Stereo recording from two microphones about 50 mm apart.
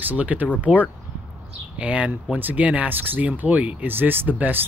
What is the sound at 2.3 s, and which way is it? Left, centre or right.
Speech, right.